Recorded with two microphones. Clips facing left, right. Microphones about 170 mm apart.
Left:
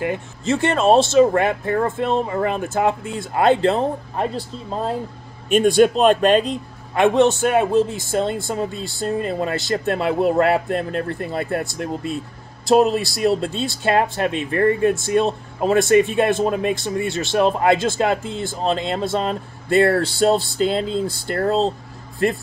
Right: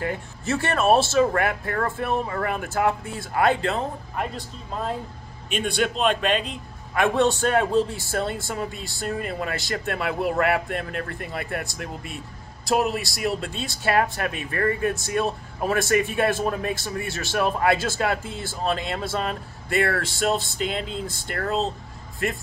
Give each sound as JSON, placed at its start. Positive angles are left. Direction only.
{"t": 0.0, "sound": "speech", "side_deg": 20}
{"t": 5.5, "sound": "speech", "side_deg": 45}
{"t": 7.3, "sound": "speech", "side_deg": 15}